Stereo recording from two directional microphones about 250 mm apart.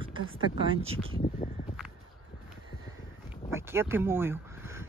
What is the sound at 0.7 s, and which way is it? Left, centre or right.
Speech, right.